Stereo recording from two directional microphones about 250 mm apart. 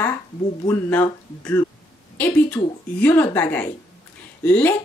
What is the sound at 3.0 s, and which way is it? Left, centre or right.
Speech, centre.